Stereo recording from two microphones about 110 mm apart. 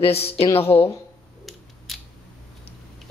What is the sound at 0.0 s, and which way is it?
Speech, 65° left (ahead or behind).